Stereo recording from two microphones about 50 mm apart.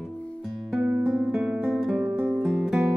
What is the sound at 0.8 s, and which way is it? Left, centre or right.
Guitar, right.